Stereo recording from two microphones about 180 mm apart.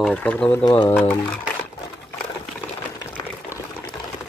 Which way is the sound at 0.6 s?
25° left (ahead or behind).